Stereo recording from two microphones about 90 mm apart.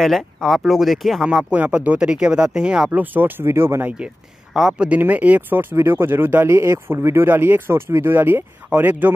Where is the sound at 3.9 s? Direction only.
10° right (ahead or behind).